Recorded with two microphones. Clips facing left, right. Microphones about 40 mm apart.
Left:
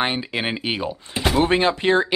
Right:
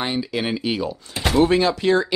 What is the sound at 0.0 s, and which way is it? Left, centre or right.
Speech, left.